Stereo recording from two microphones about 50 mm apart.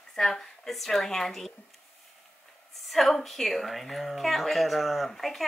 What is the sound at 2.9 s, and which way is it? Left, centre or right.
A woman's voice, centre.